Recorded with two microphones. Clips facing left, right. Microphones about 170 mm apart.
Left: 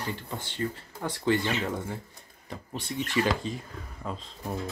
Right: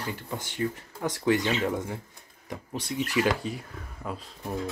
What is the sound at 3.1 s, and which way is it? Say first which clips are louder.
Speech: right 1 dB; 10° right (ahead or behind).